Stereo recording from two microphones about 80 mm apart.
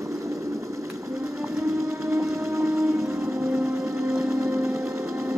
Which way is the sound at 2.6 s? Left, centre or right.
Centre.